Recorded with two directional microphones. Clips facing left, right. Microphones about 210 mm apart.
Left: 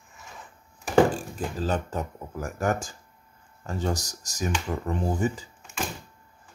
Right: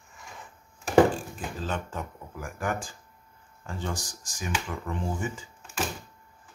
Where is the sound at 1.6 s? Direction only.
40° left (ahead or behind).